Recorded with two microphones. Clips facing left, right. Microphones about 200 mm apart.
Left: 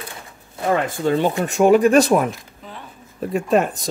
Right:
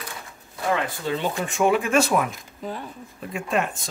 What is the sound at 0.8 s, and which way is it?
Speech, 50° left (ahead or behind).